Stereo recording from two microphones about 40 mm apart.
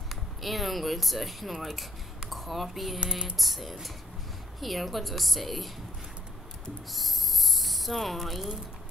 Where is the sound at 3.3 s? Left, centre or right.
Centre.